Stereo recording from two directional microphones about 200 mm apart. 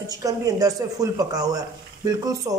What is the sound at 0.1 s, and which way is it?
A woman's voice, 15° right (ahead or behind).